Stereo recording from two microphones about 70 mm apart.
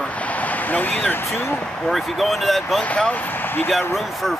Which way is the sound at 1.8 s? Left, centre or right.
Centre.